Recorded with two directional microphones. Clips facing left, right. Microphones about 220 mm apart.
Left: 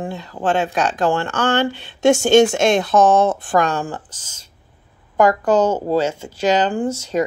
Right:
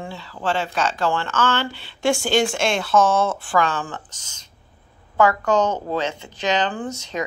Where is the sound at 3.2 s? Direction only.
40° left (ahead or behind).